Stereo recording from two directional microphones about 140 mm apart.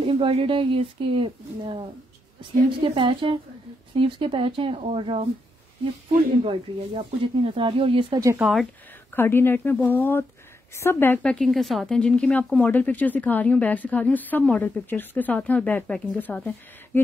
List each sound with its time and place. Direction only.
0.0 s speech: 40° right (ahead or behind)
6.4 s speech: 40° right (ahead or behind)
8.4 s speech: centre (ahead or behind)
9.1 s speech: 15° left (ahead or behind)
11.3 s speech: centre (ahead or behind)